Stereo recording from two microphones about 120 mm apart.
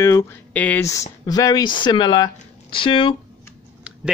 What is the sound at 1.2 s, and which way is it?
Speech, 30° left (ahead or behind).